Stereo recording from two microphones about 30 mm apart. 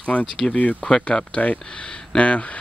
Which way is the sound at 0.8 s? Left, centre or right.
Left.